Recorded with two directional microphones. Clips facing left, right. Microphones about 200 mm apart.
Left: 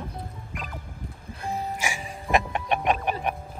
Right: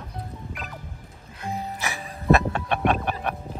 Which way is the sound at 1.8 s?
15° left (ahead or behind).